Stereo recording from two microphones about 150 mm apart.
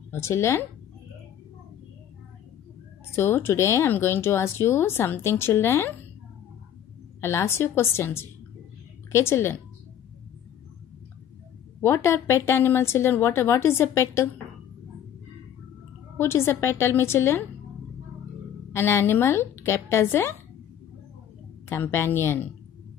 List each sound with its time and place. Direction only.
0.1 s speech: 20° left (ahead or behind)
3.2 s speech: 15° left (ahead or behind)
7.2 s speech: 15° left (ahead or behind)
11.8 s speech: 15° left (ahead or behind)
16.2 s speech: 15° left (ahead or behind)
18.7 s speech: 15° left (ahead or behind)
21.6 s speech: 15° left (ahead or behind)